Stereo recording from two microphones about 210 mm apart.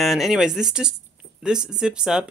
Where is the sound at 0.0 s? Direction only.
Centre (ahead or behind).